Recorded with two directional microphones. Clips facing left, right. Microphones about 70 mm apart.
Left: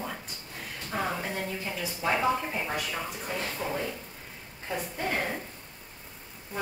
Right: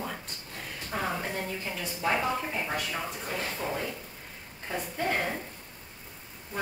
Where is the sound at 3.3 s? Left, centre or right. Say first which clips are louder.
Left 1 dB; centre.